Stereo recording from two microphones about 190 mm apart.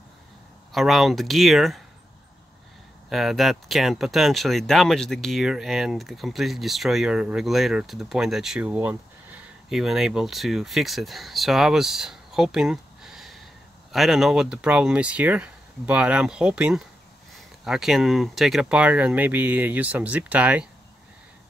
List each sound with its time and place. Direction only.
0.7 s speech: centre (ahead or behind)
3.1 s speech: centre (ahead or behind)